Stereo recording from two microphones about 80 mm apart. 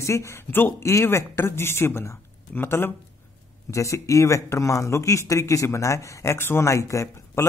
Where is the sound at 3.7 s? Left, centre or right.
Left.